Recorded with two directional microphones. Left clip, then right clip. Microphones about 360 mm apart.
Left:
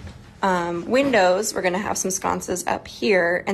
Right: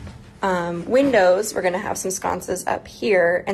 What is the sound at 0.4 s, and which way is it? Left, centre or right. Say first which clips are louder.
A woman's voice: left 1 dB; centre.